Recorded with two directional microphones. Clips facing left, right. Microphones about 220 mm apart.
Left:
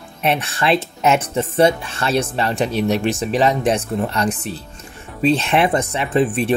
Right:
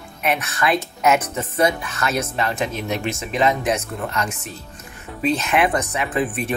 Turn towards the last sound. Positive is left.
turn(degrees=30)  # may be behind; listen again after turning